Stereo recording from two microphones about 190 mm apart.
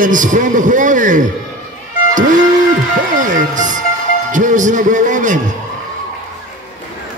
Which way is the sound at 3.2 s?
40° right (ahead or behind).